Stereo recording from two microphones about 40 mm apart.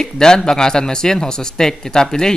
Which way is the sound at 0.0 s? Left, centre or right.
Centre.